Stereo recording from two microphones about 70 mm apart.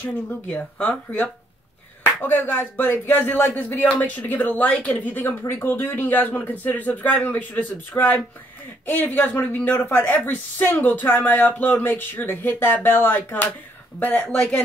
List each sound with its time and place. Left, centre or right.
0.0 s speech: centre
2.2 s speech: left
5.2 s speech: left; by 14.6 s centre